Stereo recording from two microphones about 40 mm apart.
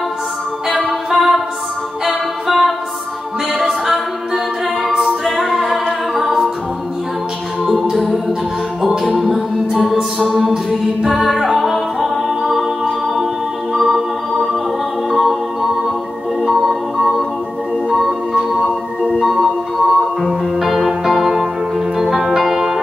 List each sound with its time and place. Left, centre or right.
0.8 s music: centre
3.8 s a capella: centre
5.0 s music: centre
7.9 s music: centre
16.4 s organ: centre
18.6 s music: centre